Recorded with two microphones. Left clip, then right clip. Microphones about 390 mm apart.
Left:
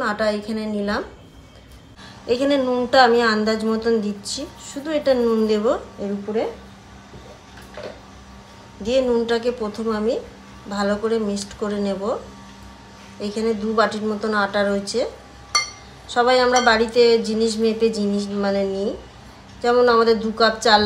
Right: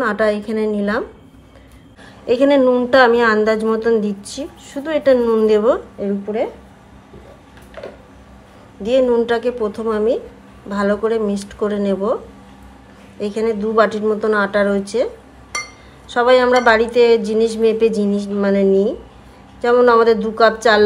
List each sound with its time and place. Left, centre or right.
0.0 s a woman's voice: centre
2.2 s a woman's voice: centre
8.8 s a woman's voice: centre
13.2 s a woman's voice: centre
16.1 s a woman's voice: centre